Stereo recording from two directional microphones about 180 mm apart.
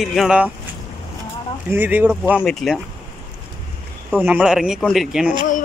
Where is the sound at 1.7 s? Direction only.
10° right (ahead or behind).